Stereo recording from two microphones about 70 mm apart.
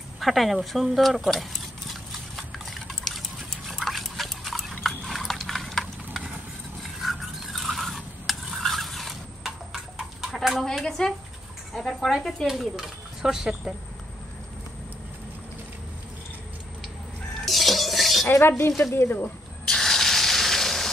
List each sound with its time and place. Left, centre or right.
0.2 s speech: centre
0.6 s horse: centre
7.0 s a sound: centre
10.6 s a woman's voice: centre
17.5 s cutlery: centre
18.9 s speech: left
19.7 s a sound: centre